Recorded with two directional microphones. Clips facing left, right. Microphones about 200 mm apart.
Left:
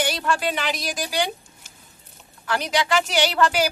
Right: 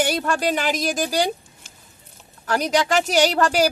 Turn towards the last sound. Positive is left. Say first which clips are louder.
# right 3 dB
turn(degrees=-40)  # may be behind; listen again after turning